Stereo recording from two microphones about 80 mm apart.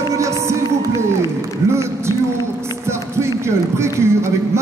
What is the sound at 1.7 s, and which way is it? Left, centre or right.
Speech, right.